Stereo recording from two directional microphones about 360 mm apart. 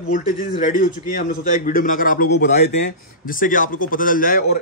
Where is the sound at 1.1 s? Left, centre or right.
Left.